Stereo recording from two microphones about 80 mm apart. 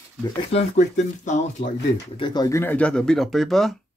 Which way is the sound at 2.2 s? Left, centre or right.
Left.